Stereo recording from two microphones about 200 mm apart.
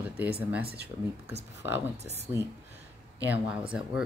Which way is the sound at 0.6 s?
50° right (ahead or behind).